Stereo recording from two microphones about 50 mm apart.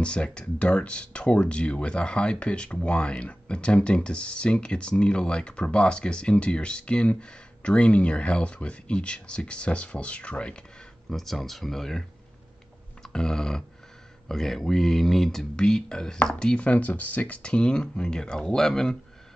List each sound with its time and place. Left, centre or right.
0.0 s speech: left
11.1 s speech: centre
13.0 s a sound: centre
14.2 s speech: centre
16.6 s speech: left; by 18.9 s centre